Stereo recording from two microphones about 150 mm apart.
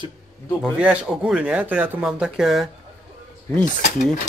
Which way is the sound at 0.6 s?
5° right (ahead or behind).